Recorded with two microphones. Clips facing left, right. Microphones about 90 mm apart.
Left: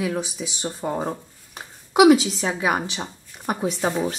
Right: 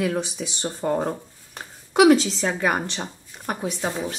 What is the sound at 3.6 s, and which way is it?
Speech, 25° left (ahead or behind).